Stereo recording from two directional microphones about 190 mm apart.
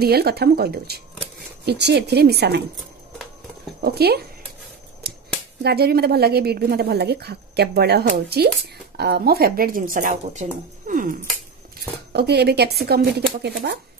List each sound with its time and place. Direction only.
0.0 s a woman's voice: 55° right (ahead or behind)
3.8 s a woman's voice: 55° right (ahead or behind)
5.6 s a woman's voice: 60° right (ahead or behind)
12.1 s a woman's voice: 60° right (ahead or behind)